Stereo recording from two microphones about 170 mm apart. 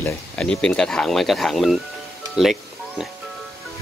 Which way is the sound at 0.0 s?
10° left (ahead or behind).